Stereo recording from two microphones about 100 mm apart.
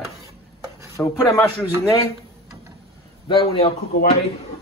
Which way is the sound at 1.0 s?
30° left (ahead or behind).